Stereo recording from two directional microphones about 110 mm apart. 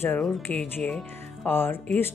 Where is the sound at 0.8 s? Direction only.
15° left (ahead or behind).